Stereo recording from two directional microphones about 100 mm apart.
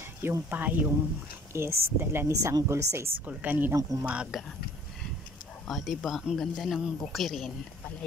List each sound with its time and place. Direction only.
0.2 s speech: 20° right (ahead or behind)
3.3 s speech: 20° right (ahead or behind)
5.7 s speech: centre (ahead or behind)